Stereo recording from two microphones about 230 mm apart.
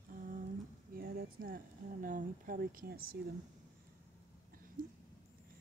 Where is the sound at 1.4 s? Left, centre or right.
Right.